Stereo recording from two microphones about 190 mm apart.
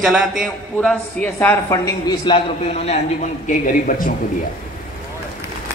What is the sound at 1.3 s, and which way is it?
A woman's voice, 15° left (ahead or behind).